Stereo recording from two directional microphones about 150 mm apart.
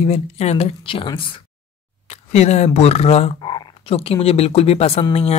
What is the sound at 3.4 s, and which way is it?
Speech, 30° left (ahead or behind).